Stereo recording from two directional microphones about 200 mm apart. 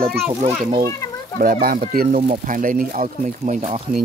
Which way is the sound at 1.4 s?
45° right (ahead or behind).